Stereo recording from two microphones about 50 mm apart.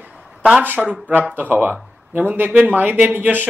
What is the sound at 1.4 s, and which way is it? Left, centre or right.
Speech, right.